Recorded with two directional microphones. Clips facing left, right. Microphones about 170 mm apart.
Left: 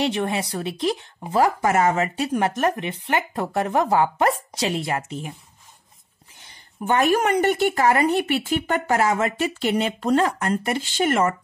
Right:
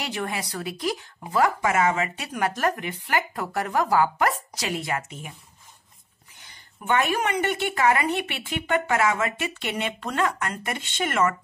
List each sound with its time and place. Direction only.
0.0 s speech: 25° left (ahead or behind)
1.6 s speech: 40° left (ahead or behind)
6.9 s speech: 40° left (ahead or behind)